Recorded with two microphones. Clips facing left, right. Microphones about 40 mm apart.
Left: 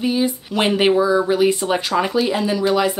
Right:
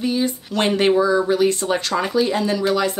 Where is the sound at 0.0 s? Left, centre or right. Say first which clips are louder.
Left 2 dB; centre.